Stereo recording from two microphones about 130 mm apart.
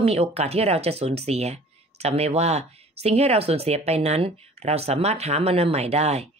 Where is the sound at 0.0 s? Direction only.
50° right (ahead or behind).